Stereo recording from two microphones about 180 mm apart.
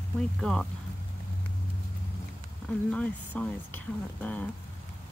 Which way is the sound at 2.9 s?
5° left (ahead or behind).